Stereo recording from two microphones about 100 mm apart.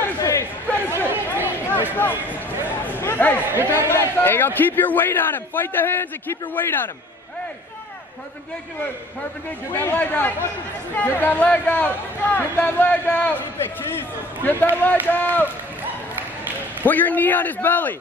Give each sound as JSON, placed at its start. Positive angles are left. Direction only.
{"t": 0.2, "sound": "chatter", "side_deg": 30}
{"t": 1.0, "sound": "chatter", "side_deg": -20}
{"t": 3.0, "sound": "a man's voice", "side_deg": 20}
{"t": 3.4, "sound": "a man's voice", "side_deg": -25}
{"t": 3.9, "sound": "a man's voice", "side_deg": 25}
{"t": 9.7, "sound": "a man's voice", "side_deg": 20}
{"t": 14.4, "sound": "speech", "side_deg": 20}
{"t": 16.8, "sound": "speech", "side_deg": 15}